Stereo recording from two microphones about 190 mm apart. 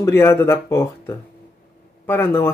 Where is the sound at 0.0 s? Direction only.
15° left (ahead or behind).